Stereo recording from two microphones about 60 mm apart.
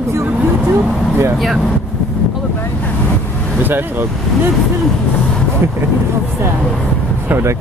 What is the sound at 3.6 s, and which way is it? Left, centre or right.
Speech, right.